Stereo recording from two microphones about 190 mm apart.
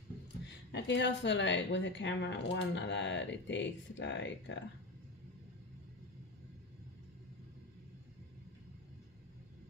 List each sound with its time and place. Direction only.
0.7 s a woman's voice: 70° left (ahead or behind)